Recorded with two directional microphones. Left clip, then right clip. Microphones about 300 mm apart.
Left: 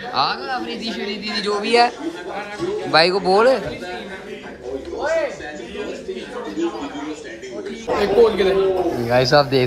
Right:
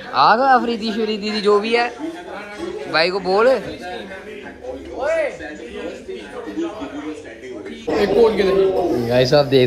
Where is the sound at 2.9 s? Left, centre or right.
Centre.